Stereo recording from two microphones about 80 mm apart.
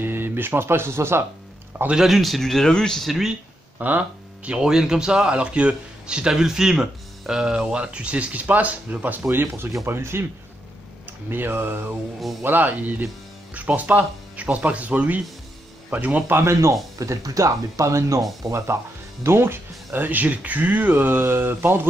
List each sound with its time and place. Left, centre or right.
0.0 s speech: right
1.9 s a man's voice: centre
3.1 s a man's voice: centre
3.7 s a man's voice: centre
11.2 s speech: right
16.3 s speech: right